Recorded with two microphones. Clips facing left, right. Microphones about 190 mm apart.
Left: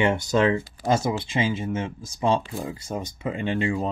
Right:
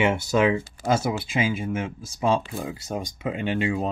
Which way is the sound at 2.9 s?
15° right (ahead or behind).